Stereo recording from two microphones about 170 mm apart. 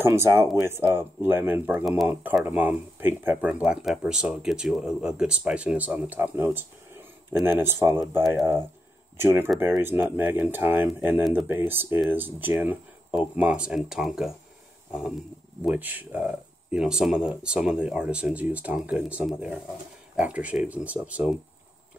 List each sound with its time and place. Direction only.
0.0 s speech: 15° right (ahead or behind)
9.2 s speech: 15° right (ahead or behind)
14.9 s wild animals: 5° right (ahead or behind)
15.6 s speech: 10° right (ahead or behind)